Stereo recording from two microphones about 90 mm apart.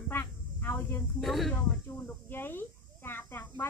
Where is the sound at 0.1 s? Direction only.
25° left (ahead or behind).